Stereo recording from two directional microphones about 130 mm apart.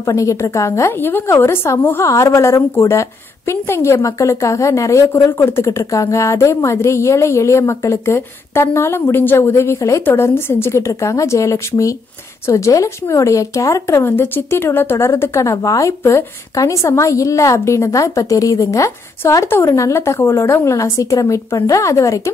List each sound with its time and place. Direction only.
0.0 s a woman's voice: 25° left (ahead or behind)